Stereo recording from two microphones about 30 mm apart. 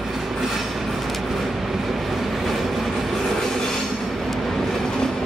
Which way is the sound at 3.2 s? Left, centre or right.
Centre.